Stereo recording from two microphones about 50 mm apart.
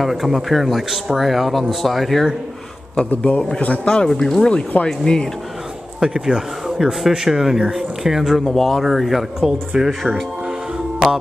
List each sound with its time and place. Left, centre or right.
0.0 s speech: centre
3.3 s a man's voice: centre
5.9 s speech: centre